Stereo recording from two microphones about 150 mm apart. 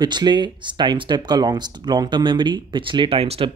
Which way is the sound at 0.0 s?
30° right (ahead or behind).